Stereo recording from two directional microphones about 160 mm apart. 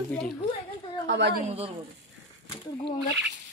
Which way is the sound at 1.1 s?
90° right.